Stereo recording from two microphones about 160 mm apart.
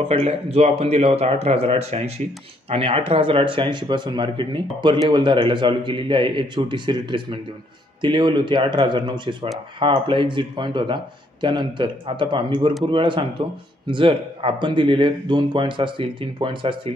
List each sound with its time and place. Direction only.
0.1 s a man's voice: 40° right (ahead or behind)